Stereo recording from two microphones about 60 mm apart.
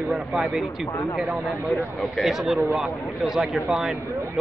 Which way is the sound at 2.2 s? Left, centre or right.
Centre.